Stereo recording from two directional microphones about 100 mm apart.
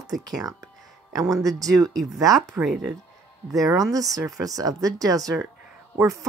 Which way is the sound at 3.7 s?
35° right (ahead or behind).